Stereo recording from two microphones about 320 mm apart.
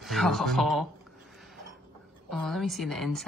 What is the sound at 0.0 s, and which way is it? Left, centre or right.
Speech, centre.